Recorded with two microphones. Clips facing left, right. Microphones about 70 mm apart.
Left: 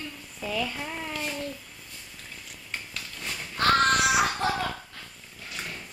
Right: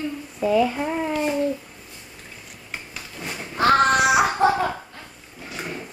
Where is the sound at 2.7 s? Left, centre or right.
Centre.